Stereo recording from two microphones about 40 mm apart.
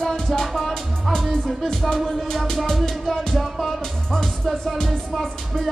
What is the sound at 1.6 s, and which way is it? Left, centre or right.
Music, centre.